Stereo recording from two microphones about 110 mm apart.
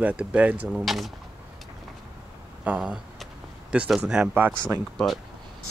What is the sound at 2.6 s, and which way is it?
A man's voice, 10° right (ahead or behind).